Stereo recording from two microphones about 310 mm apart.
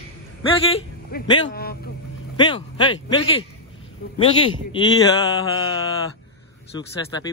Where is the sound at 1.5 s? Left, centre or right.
Left.